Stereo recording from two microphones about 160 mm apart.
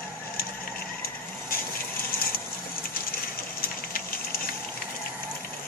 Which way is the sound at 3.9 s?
65° left (ahead or behind).